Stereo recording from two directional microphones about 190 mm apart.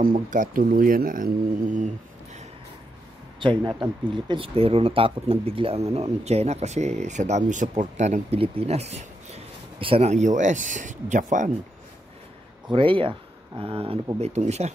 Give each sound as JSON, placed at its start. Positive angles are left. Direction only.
{"t": 0.0, "sound": "speech", "side_deg": -45}
{"t": 3.3, "sound": "speech", "side_deg": -25}
{"t": 12.7, "sound": "speech", "side_deg": -25}